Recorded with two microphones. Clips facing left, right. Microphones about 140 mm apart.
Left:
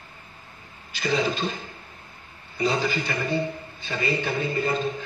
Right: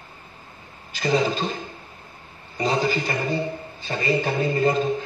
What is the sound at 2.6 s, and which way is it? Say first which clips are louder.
Speech: right 2 dB; 40° right (ahead or behind).